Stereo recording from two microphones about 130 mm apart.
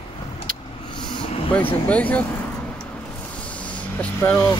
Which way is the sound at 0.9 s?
35° left (ahead or behind).